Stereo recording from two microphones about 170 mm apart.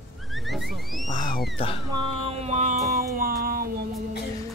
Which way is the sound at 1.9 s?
30° right (ahead or behind).